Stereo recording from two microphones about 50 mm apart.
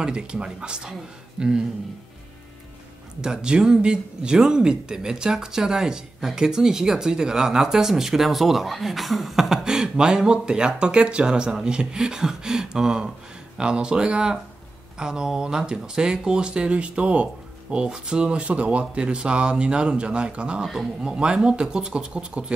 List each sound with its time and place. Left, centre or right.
0.0 s speech: centre
3.2 s speech: centre